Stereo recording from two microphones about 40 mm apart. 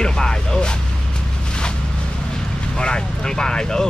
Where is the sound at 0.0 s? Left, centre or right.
Centre.